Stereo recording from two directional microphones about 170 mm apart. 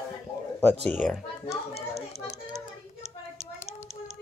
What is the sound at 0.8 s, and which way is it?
Speech, 5° left (ahead or behind).